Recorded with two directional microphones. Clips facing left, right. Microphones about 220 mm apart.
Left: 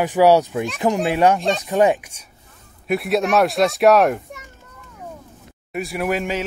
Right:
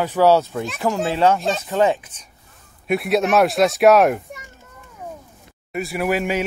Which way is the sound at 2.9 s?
Centre (ahead or behind).